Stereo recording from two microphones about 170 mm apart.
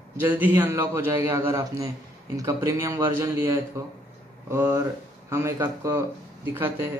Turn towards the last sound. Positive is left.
turn(degrees=-15)  # may be behind; listen again after turning